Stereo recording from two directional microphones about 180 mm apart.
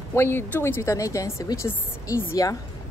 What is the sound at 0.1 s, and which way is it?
Speech, 10° left (ahead or behind).